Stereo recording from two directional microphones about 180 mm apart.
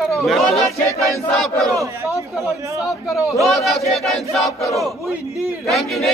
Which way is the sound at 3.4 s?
Centre (ahead or behind).